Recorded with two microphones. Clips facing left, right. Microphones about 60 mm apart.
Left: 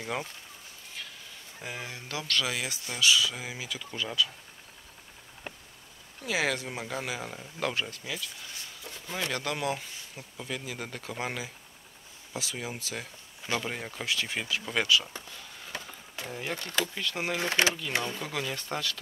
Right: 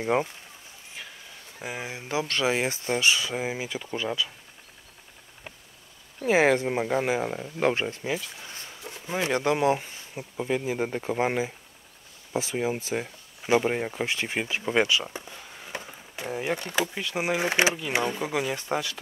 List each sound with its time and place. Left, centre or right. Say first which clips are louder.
0.0 s speech: right 9 dB; right
1.6 s speech: right 4 dB; centre
6.2 s speech: right 9 dB; right; by 18.9 s centre